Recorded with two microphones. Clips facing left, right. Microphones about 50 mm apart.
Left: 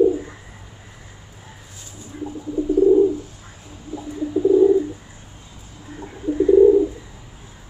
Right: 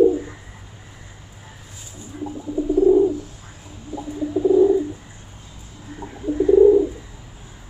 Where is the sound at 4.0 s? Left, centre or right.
Centre.